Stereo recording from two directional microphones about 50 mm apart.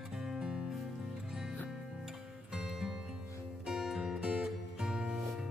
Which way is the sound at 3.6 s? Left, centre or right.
Centre.